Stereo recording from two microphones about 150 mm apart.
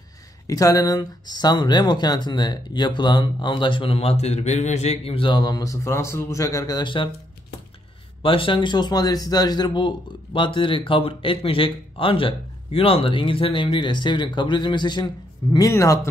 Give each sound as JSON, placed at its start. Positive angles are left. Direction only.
{"t": 0.5, "sound": "speech", "side_deg": 25}
{"t": 8.2, "sound": "speech", "side_deg": 35}